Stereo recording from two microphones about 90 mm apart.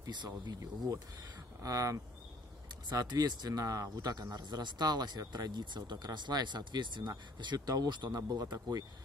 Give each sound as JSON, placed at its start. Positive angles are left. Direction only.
{"t": 0.0, "sound": "speech", "side_deg": -55}
{"t": 0.6, "sound": "speech", "side_deg": -40}
{"t": 3.0, "sound": "speech", "side_deg": -45}